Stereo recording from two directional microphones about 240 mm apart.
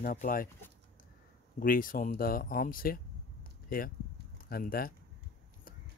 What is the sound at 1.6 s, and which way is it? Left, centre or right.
Speech, left.